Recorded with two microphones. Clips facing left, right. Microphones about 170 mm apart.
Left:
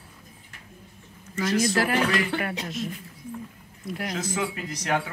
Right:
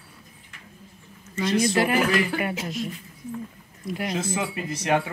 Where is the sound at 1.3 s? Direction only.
25° right (ahead or behind).